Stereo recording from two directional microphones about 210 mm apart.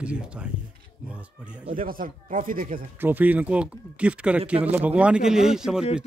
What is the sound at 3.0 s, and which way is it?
Speech, 10° right (ahead or behind).